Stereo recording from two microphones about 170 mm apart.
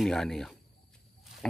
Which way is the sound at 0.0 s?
Centre (ahead or behind).